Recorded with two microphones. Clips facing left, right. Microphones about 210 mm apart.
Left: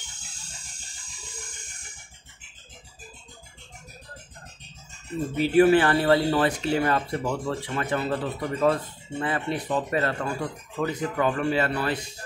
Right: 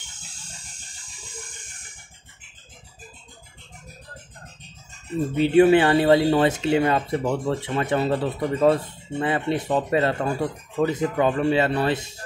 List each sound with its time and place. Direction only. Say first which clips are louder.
5.3 s speech: right 3 dB; 25° right (ahead or behind)